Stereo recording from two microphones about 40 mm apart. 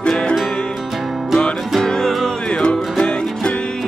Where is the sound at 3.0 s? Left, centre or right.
Left.